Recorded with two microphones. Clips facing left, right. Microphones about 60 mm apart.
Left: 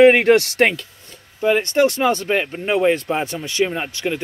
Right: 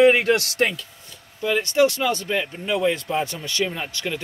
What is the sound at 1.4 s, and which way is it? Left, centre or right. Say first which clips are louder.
Speech: left 3 dB; left.